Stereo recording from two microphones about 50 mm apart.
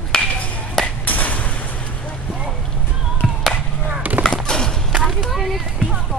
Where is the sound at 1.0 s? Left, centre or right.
Left.